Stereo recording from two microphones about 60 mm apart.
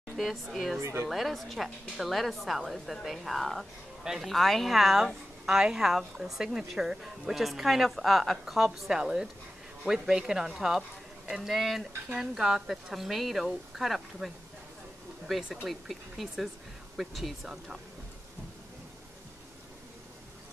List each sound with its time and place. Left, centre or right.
0.1 s a woman's voice: centre
0.7 s speech: right
1.0 s a woman's voice: centre
4.3 s a woman's voice: centre
15.5 s a woman's voice: centre